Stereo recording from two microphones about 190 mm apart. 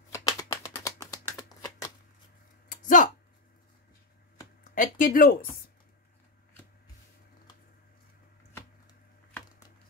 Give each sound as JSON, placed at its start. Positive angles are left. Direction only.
{"t": 0.1, "sound": "shuffling cards", "side_deg": 20}
{"t": 2.7, "sound": "a sound", "side_deg": 45}
{"t": 4.7, "sound": "speech", "side_deg": 45}